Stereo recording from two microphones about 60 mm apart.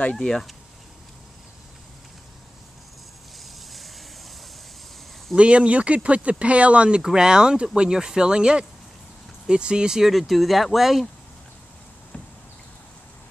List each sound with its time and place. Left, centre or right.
0.1 s speech: centre
5.3 s speech: centre